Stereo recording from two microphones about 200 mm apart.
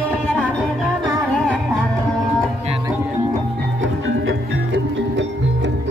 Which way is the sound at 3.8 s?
75° right (ahead or behind).